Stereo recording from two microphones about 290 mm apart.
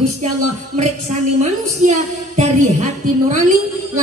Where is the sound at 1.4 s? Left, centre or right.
Right.